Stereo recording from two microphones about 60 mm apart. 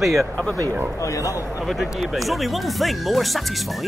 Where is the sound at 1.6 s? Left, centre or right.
Centre.